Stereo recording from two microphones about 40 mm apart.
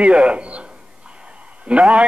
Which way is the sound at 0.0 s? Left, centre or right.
Right.